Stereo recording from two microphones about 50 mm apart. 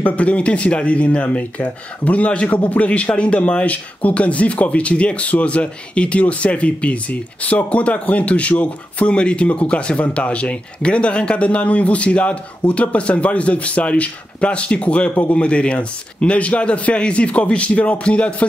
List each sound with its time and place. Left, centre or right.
0.0 s speech: left